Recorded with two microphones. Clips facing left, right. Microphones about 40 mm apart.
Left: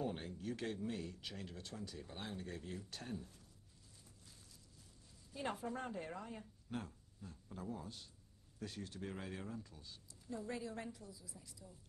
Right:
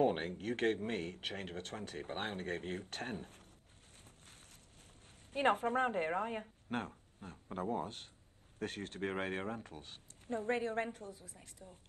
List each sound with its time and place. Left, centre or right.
0.0 s speech: right
4.0 s a sound: right
5.3 s a woman's voice: right